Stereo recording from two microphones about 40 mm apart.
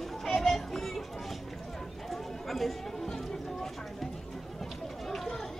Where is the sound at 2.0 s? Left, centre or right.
Centre.